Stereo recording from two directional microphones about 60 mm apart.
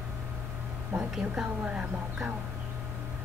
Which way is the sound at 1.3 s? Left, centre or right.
Centre.